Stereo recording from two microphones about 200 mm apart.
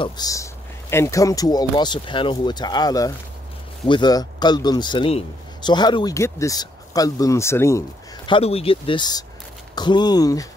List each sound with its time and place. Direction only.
0.0 s a man's voice: 20° left (ahead or behind)
8.3 s a man's voice: 30° left (ahead or behind)